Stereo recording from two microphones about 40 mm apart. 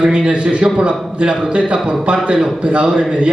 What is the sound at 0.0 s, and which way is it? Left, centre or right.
A man's voice, right.